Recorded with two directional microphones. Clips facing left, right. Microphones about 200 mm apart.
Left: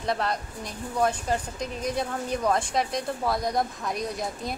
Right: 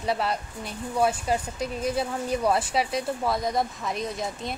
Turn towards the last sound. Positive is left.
turn(degrees=0)  # may be behind; listen again after turning